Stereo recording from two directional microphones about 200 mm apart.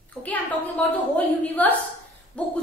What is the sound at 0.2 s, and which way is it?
A woman's voice, 5° left (ahead or behind).